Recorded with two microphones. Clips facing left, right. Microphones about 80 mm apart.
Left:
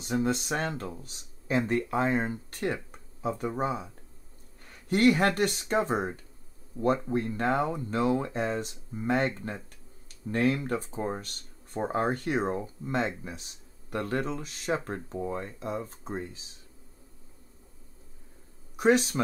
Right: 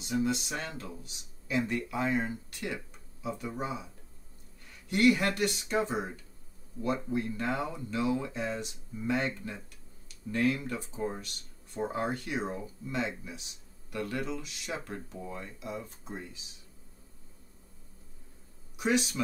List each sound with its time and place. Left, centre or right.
0.0 s speech: left
18.8 s speech: left